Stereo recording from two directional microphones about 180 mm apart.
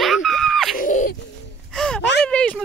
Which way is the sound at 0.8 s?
45° left (ahead or behind).